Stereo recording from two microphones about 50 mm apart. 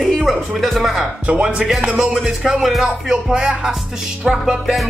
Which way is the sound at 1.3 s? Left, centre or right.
Right.